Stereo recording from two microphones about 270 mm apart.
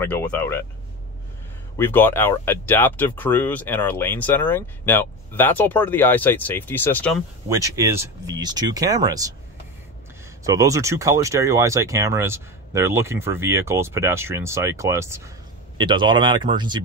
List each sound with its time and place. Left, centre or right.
0.0 s speech: centre
1.8 s speech: centre
7.4 s speech: centre
10.4 s speech: centre